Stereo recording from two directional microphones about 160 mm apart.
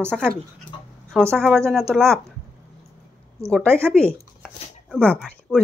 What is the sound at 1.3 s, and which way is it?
Speech, 5° left (ahead or behind).